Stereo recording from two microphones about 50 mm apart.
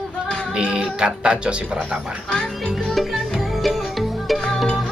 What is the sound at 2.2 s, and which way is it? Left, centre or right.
Speech, centre.